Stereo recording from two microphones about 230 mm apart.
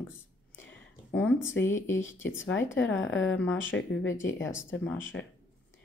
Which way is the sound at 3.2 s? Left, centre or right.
Centre.